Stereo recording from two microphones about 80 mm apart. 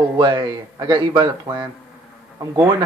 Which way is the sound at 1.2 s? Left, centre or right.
Right.